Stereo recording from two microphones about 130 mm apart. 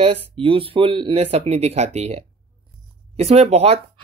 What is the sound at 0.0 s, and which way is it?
Speech, 45° right (ahead or behind).